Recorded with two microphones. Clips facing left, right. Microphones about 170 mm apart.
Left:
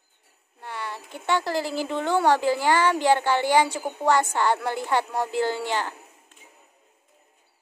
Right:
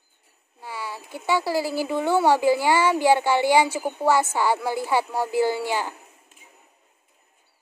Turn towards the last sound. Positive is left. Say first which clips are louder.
# right 2 dB
turn(degrees=-10)  # may be behind; listen again after turning